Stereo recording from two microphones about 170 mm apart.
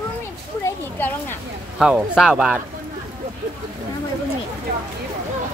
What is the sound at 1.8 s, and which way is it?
Speech, 5° right (ahead or behind).